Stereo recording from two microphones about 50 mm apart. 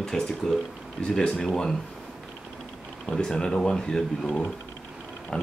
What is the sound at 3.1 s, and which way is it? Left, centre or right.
Speech, centre.